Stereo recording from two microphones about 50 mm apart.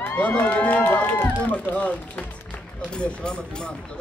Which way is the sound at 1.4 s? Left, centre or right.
Left.